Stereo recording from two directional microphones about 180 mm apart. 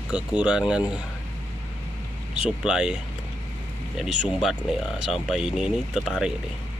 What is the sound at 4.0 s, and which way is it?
Speech, 5° right (ahead or behind).